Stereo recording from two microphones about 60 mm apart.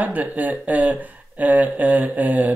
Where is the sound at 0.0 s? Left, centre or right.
Right.